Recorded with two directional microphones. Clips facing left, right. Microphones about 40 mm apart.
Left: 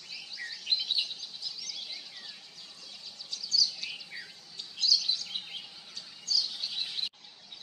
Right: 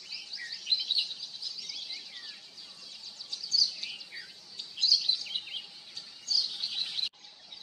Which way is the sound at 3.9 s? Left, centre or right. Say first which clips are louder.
Left 1 dB; centre.